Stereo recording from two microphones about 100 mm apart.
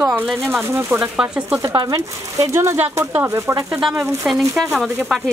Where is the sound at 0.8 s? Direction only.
20° right (ahead or behind).